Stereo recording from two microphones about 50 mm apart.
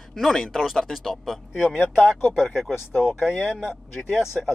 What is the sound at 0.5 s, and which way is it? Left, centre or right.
Speech, centre.